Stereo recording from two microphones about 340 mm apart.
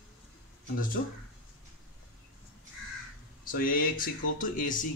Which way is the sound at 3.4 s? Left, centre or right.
Left.